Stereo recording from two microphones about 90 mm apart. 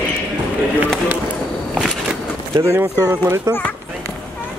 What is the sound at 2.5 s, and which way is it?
Speech, 25° right (ahead or behind).